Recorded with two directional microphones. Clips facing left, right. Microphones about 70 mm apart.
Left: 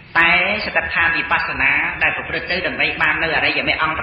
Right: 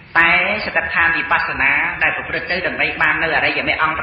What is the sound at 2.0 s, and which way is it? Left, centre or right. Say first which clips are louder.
A woman's voice: right 1 dB; centre.